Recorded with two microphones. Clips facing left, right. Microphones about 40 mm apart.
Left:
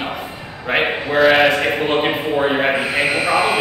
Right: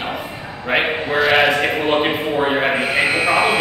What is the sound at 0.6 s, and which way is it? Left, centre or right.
A man's voice, centre.